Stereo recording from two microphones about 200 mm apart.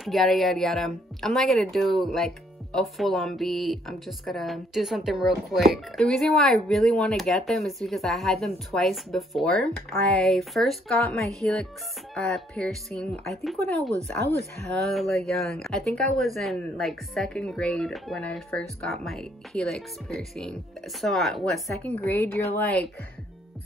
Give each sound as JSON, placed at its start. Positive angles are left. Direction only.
{"t": 0.0, "sound": "speech", "side_deg": 0}